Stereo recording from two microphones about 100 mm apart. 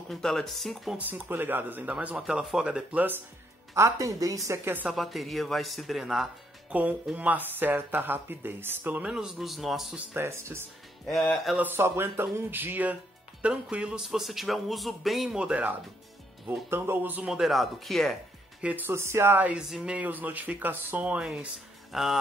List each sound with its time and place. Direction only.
0.1 s speech: 5° left (ahead or behind)
0.9 s speech: 20° right (ahead or behind)
3.7 s a woman's voice: 30° right (ahead or behind)
4.6 s speech: 20° right (ahead or behind)
4.9 s speech: centre (ahead or behind)
6.7 s speech: 15° right (ahead or behind)
9.1 s speech: 5° right (ahead or behind)
10.1 s speech: 25° right (ahead or behind)
11.1 s speech: centre (ahead or behind)
11.5 s speech: 20° right (ahead or behind)
17.3 s speech: centre (ahead or behind)
18.6 s speech: 15° right (ahead or behind)
19.5 s speech: 10° right (ahead or behind)
21.2 s speech: 5° right (ahead or behind)